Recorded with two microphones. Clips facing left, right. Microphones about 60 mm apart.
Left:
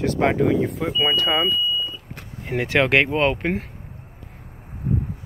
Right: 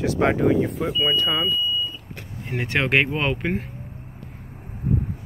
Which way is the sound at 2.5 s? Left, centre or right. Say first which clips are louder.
Left 3 dB; left.